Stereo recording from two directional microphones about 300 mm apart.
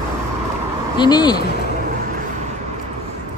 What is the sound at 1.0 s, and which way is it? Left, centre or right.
Speech, centre.